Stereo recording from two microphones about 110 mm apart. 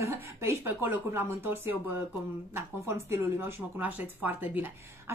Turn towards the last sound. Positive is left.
turn(degrees=-15)  # may be behind; listen again after turning